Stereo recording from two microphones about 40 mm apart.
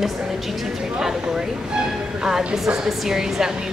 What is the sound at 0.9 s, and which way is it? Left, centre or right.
A woman's voice, centre.